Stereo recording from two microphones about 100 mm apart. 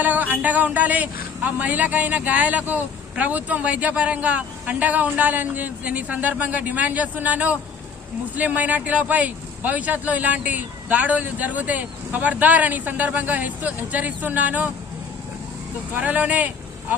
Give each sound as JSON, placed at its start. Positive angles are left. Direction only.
{"t": 0.0, "sound": "speech", "side_deg": -15}
{"t": 15.9, "sound": "speech", "side_deg": -15}